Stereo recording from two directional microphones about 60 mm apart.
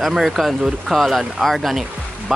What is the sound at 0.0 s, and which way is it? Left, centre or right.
Speech, centre.